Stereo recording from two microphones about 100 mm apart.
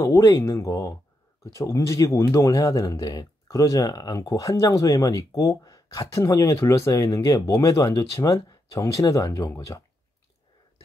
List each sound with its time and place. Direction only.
0.0 s speech: 25° left (ahead or behind)